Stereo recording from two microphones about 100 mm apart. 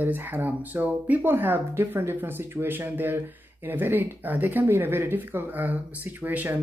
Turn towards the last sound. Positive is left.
turn(degrees=-20)  # may be behind; listen again after turning